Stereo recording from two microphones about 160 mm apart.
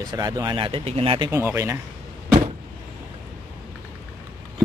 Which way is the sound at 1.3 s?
15° right (ahead or behind).